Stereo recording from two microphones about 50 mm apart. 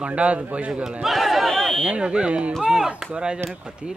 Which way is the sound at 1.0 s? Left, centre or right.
Centre.